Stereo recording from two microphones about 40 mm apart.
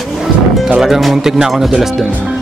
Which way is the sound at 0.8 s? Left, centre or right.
Centre.